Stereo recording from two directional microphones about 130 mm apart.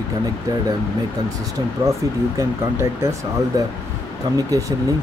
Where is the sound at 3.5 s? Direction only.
25° right (ahead or behind).